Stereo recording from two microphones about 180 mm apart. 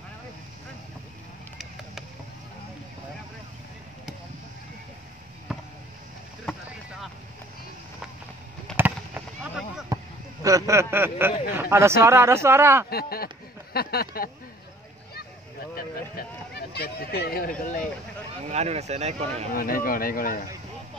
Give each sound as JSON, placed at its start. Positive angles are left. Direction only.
{"t": 5.5, "sound": "basketball bounce", "side_deg": 0}
{"t": 8.7, "sound": "fireworks", "side_deg": -10}
{"t": 10.4, "sound": "speech", "side_deg": -15}
{"t": 12.9, "sound": "speech", "side_deg": 55}
{"t": 13.7, "sound": "a sound", "side_deg": 60}
{"t": 15.7, "sound": "speech", "side_deg": 60}
{"t": 18.5, "sound": "speech", "side_deg": -35}
{"t": 19.5, "sound": "speech", "side_deg": 55}